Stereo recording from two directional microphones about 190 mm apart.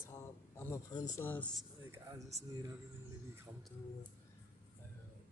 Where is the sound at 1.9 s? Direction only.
15° right (ahead or behind).